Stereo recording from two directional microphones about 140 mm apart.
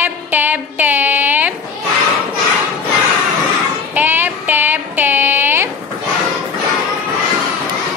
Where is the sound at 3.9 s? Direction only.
15° right (ahead or behind).